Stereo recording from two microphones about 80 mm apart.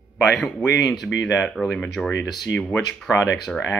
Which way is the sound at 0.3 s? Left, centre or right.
Centre.